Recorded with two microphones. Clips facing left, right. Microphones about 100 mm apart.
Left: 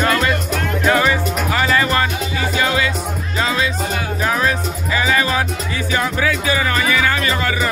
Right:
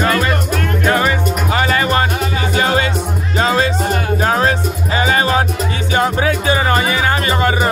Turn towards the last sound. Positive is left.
turn(degrees=-30)  # may be behind; listen again after turning